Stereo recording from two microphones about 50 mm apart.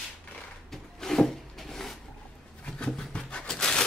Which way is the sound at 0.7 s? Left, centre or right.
Centre.